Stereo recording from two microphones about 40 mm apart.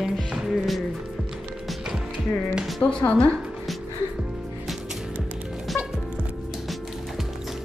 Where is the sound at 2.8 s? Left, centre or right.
Left.